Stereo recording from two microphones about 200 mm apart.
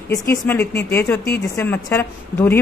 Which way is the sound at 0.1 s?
10° left (ahead or behind).